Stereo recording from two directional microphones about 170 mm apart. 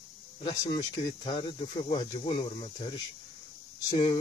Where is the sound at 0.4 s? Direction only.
30° left (ahead or behind).